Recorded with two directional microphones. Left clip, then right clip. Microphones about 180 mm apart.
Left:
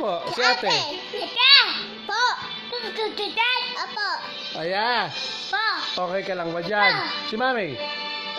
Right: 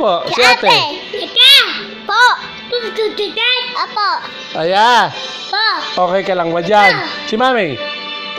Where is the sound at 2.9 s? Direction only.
15° left (ahead or behind).